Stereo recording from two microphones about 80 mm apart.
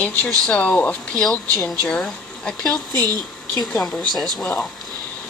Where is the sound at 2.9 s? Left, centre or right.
Right.